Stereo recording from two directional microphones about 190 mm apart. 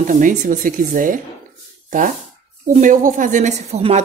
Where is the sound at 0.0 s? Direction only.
45° right (ahead or behind).